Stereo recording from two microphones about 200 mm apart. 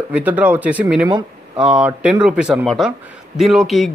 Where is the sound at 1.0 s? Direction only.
20° right (ahead or behind).